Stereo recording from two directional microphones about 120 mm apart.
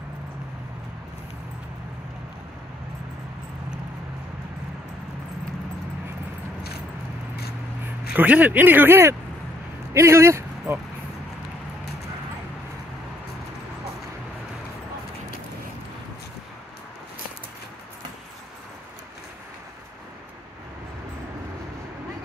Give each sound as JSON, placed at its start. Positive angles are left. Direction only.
{"t": 8.1, "sound": "speech", "side_deg": -10}